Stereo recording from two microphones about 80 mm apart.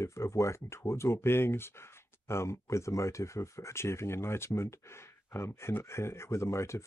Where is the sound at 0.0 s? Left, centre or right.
Left.